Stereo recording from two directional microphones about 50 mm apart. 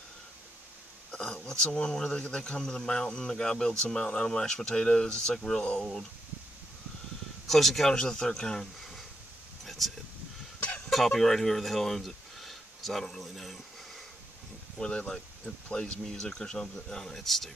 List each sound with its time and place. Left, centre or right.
1.1 s speech: centre
7.4 s speech: centre
9.7 s a sound: centre
10.9 s speech: centre
14.8 s speech: centre